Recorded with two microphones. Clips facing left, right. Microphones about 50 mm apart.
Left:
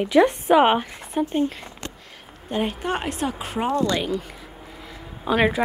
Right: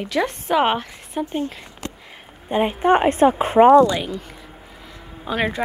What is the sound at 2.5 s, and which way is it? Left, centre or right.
A woman's voice, right.